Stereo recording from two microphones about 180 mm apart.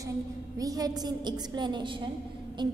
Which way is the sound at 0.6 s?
20° right (ahead or behind).